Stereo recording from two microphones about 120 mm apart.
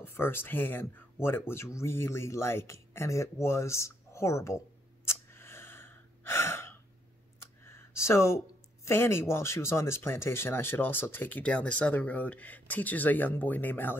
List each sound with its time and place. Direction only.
0.0 s speech: 20° left (ahead or behind)
5.0 s gasp: 20° left (ahead or behind)
7.6 s a sound: 20° left (ahead or behind)
8.8 s speech: 20° left (ahead or behind)